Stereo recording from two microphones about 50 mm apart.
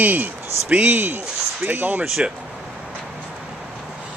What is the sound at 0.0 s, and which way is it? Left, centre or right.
Speech, right.